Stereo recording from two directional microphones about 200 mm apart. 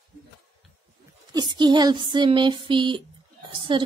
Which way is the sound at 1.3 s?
20° right (ahead or behind).